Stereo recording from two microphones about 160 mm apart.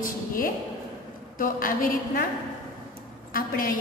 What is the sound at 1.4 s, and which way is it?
Speech, 60° left (ahead or behind).